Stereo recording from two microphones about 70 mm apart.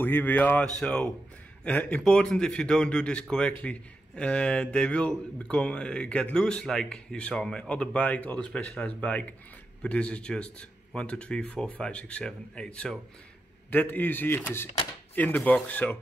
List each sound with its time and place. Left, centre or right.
0.0 s speech: left
0.7 s speech: centre
2.0 s speech: centre
13.7 s speech: left